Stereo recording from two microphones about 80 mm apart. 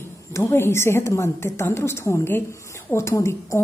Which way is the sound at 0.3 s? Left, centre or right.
Left.